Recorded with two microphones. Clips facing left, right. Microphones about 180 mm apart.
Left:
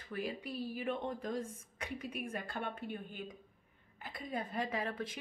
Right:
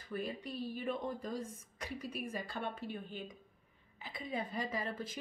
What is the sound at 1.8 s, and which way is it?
A woman's voice, 60° left (ahead or behind).